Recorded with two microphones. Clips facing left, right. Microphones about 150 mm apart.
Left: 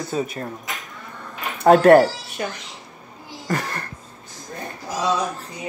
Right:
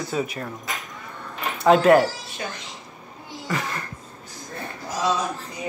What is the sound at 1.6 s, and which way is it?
Speech, 45° left (ahead or behind).